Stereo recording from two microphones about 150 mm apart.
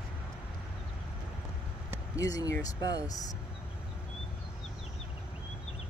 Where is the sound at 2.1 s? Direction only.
25° left (ahead or behind).